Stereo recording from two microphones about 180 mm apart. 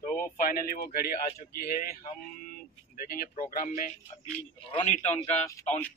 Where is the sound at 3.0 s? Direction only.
55° left (ahead or behind).